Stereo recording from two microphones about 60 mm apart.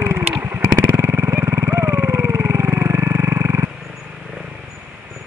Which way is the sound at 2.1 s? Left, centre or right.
Right.